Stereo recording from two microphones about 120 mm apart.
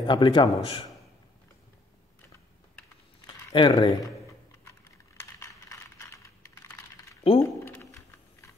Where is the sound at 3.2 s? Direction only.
40° left (ahead or behind).